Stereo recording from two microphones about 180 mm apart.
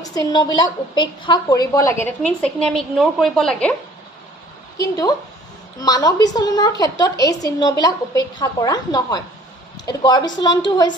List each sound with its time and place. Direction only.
0.0 s a woman's voice: 20° left (ahead or behind)
5.8 s a woman's voice: 20° left (ahead or behind)